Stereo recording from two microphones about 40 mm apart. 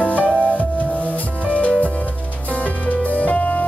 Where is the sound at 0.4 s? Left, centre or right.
Left.